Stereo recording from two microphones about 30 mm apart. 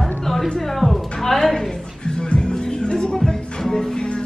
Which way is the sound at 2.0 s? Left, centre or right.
Left.